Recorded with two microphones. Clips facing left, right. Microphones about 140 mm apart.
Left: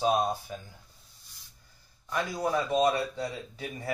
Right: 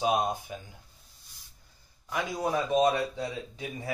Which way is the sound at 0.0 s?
15° right (ahead or behind).